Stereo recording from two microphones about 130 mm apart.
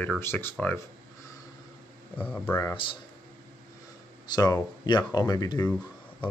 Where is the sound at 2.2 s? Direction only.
15° left (ahead or behind).